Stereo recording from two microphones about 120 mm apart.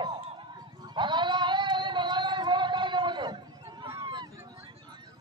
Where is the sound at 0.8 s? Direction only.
40° right (ahead or behind).